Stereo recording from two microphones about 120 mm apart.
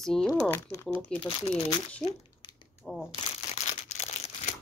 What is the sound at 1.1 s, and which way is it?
Speech, 50° left (ahead or behind).